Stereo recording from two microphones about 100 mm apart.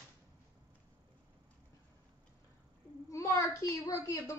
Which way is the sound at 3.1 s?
35° left (ahead or behind).